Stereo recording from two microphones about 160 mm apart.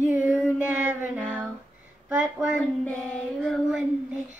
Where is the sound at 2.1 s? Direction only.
5° right (ahead or behind).